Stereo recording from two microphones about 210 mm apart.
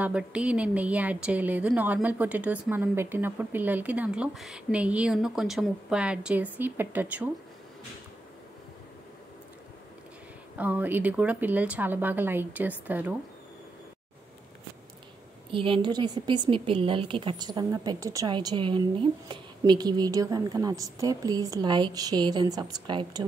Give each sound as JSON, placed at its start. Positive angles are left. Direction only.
{"t": 0.0, "sound": "a woman's voice", "side_deg": -5}
{"t": 10.6, "sound": "a woman's voice", "side_deg": -10}
{"t": 15.5, "sound": "a woman's voice", "side_deg": -25}